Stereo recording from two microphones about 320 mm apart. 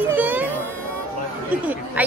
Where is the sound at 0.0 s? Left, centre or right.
Centre.